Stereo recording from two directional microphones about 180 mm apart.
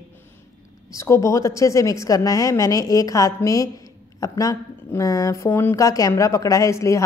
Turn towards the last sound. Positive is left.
turn(degrees=15)  # may be behind; listen again after turning